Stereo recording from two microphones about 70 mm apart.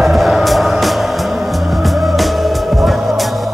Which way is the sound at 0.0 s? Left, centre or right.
Centre.